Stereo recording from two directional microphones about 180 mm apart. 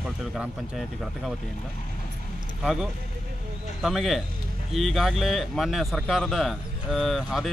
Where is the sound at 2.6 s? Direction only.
Centre (ahead or behind).